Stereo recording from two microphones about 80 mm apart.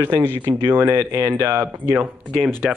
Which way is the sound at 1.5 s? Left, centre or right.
Right.